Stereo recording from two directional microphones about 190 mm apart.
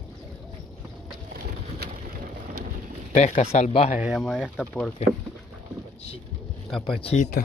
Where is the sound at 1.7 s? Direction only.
50° right (ahead or behind).